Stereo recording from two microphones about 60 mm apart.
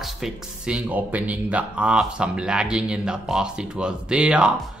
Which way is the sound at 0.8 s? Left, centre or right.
Right.